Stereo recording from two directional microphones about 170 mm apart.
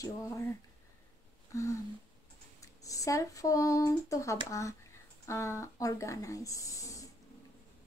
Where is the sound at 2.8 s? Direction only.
20° left (ahead or behind).